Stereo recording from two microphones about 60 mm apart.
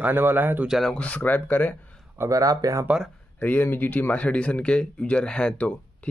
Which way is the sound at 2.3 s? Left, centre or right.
Right.